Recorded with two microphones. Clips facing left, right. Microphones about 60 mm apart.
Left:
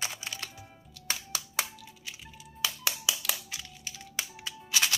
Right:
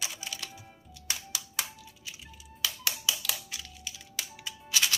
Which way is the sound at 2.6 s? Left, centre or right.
Left.